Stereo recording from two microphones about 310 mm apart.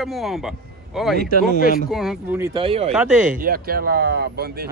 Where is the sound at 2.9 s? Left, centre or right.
Centre.